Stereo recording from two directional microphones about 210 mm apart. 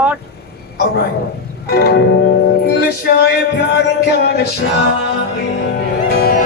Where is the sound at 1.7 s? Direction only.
50° left (ahead or behind).